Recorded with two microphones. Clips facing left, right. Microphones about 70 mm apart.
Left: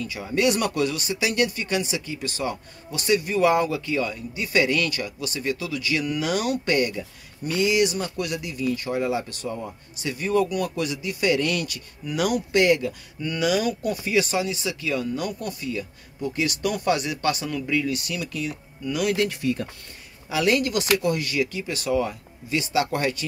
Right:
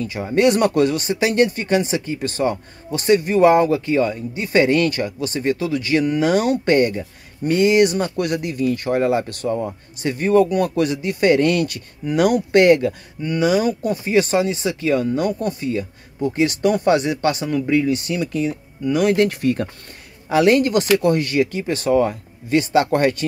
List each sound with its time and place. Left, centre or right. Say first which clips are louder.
0.0 s speech: right 6 dB; right
13.2 s speech: right 5 dB; right